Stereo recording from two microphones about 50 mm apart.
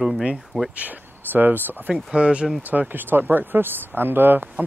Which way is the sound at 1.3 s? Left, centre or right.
Right.